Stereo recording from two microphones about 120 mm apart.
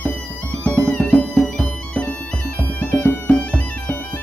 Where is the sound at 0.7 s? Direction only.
10° left (ahead or behind).